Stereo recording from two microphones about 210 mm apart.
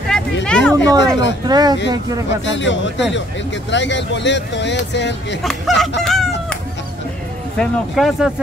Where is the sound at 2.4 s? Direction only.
60° left (ahead or behind).